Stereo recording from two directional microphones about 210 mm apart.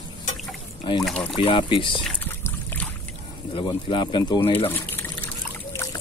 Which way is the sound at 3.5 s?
25° left (ahead or behind).